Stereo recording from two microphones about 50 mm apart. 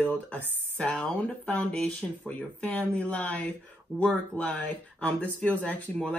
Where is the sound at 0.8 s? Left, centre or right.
Centre.